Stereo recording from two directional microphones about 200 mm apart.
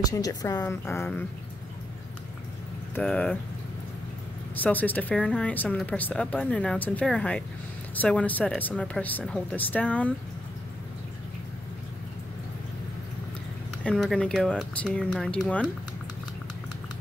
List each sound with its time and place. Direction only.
0.0 s a woman's voice: 20° left (ahead or behind)
2.9 s speech: 5° left (ahead or behind)
4.6 s speech: 10° left (ahead or behind)
13.8 s speech: 5° left (ahead or behind)